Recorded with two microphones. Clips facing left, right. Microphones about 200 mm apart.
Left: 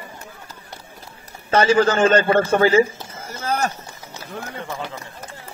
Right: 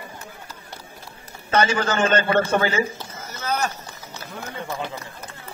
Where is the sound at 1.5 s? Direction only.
35° left (ahead or behind).